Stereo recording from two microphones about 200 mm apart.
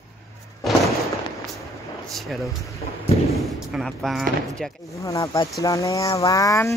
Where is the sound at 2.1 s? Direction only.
Centre (ahead or behind).